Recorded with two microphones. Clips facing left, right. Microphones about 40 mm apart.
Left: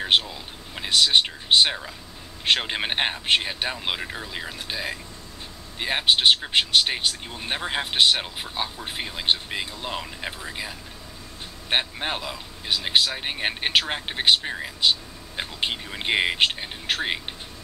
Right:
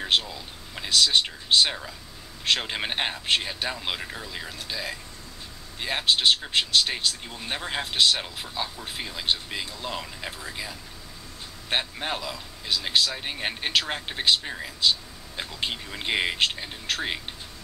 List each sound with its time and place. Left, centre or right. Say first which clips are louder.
0.0 s a sound: left 3 dB; left
1.2 s speech: left 3 dB; centre
3.7 s speech: left 3 dB; centre
12.0 s speech: left 2 dB; left